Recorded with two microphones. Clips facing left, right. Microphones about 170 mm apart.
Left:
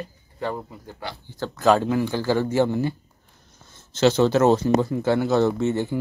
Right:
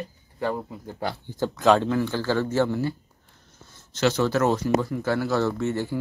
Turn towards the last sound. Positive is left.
turn(degrees=20)  # may be behind; listen again after turning